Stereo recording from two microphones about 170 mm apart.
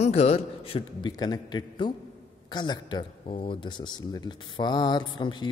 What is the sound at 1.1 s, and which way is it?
Speech, 25° left (ahead or behind).